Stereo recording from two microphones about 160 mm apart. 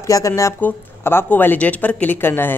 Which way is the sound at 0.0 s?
20° left (ahead or behind).